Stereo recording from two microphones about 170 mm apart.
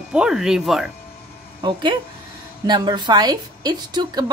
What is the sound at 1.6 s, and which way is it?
A woman's voice, 30° right (ahead or behind).